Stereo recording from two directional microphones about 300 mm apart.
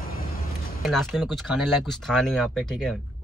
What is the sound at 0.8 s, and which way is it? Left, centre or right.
Speech, centre.